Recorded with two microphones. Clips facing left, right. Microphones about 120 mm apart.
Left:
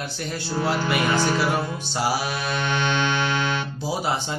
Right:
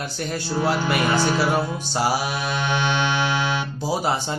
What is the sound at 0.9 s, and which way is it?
Music, 5° right (ahead or behind).